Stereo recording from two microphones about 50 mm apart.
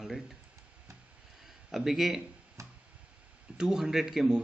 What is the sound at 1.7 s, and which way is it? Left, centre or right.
Speech, centre.